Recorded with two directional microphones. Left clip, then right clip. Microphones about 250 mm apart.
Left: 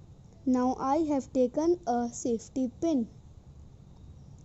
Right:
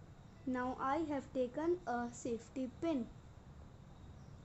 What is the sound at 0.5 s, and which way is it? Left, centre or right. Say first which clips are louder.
Speech: left 10 dB; left.